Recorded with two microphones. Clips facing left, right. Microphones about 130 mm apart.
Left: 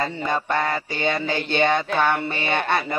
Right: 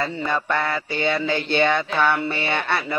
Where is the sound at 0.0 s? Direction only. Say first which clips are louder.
Even; 40° left (ahead or behind).